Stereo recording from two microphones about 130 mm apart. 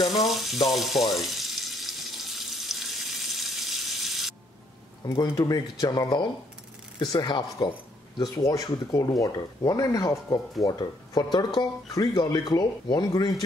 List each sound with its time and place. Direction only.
0.1 s water: centre (ahead or behind)
0.7 s frying: centre (ahead or behind)
1.1 s water: centre (ahead or behind)
5.2 s speech: 25° left (ahead or behind)